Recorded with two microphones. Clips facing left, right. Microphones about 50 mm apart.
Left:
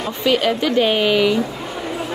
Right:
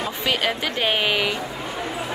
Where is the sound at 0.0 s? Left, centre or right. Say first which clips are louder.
Left 5 dB; centre.